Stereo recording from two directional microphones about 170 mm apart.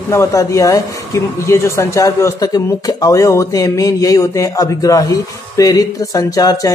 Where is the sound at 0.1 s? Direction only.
15° left (ahead or behind).